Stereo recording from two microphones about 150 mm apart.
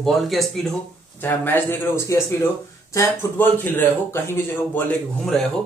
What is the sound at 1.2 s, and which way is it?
Speech, 15° left (ahead or behind).